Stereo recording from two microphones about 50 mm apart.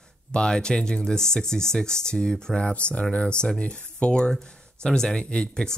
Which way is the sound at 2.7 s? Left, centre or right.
Left.